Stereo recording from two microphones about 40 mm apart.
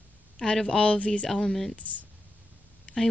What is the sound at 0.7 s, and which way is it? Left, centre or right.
Speech, left.